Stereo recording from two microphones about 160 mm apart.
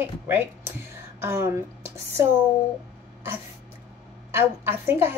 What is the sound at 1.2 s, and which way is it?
Speech, 15° right (ahead or behind).